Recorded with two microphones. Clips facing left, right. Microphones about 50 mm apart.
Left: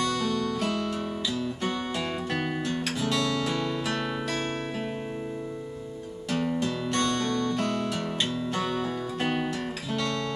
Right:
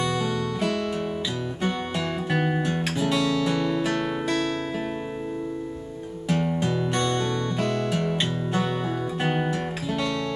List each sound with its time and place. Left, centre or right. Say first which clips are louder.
0.0 s music: right 1 dB; centre
2.3 s music: right 6 dB; centre
3.1 s guitar: right 4 dB; centre
6.2 s music: right 3 dB; right
6.9 s music: right 2 dB; centre